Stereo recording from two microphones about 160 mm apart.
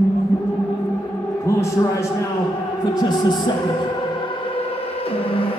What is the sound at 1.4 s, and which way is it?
A man's voice, 20° left (ahead or behind).